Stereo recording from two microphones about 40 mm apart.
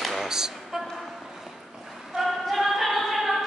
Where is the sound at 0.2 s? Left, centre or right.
Centre.